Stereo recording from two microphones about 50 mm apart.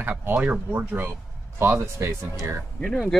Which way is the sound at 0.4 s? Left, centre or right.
Right.